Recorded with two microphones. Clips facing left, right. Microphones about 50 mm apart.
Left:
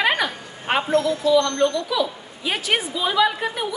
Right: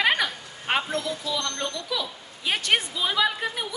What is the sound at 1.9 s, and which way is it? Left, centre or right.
A woman's voice, centre.